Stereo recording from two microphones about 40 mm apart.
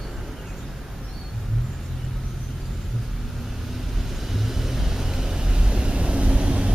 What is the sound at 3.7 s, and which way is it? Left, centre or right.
Vehicle, centre.